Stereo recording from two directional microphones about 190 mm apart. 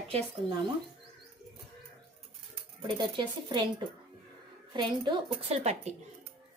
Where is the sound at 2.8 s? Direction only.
25° right (ahead or behind).